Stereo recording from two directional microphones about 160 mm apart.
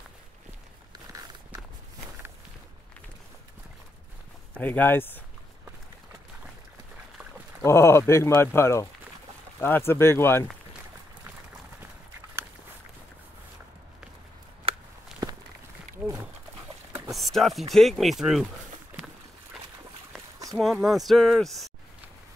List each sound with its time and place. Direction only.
0.9 s walk: 20° right (ahead or behind)
4.6 s speech: 10° left (ahead or behind)
7.6 s speech: 15° left (ahead or behind)
15.1 s walk: 5° right (ahead or behind)
17.1 s speech: centre (ahead or behind)
20.5 s speech: centre (ahead or behind)